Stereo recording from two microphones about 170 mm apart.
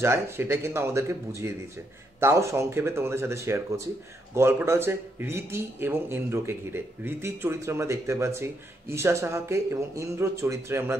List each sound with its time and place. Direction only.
0.0 s speech: 15° right (ahead or behind)